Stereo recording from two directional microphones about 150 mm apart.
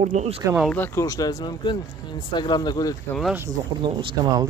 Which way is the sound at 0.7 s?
15° left (ahead or behind).